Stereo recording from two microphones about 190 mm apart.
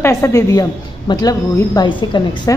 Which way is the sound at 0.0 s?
15° left (ahead or behind).